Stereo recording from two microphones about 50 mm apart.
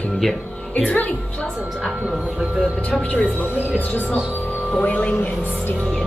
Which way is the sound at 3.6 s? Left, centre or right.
Right.